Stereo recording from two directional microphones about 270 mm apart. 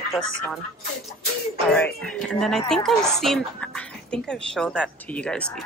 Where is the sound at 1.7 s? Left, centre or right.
Centre.